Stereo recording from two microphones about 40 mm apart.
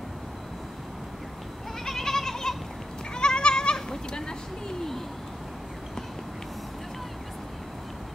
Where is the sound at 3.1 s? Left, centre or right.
Left.